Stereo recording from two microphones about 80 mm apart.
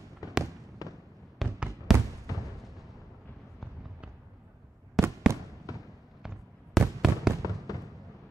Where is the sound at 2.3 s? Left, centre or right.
Left.